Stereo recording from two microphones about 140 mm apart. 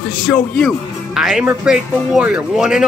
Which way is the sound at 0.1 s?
Centre (ahead or behind).